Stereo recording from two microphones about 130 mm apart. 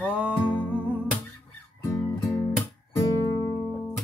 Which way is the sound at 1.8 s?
25° left (ahead or behind).